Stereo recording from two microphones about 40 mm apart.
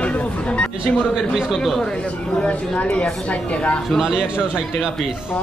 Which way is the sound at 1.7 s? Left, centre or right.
Left.